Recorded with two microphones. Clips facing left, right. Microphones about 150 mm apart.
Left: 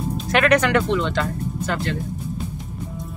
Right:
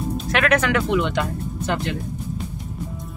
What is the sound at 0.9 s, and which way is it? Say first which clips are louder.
Speech: right 1 dB; 15° right (ahead or behind).